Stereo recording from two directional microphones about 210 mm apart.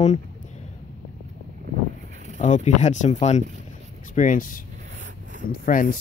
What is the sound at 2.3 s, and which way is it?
Speech, 35° left (ahead or behind).